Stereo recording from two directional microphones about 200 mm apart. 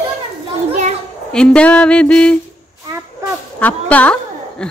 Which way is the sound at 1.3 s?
5° left (ahead or behind).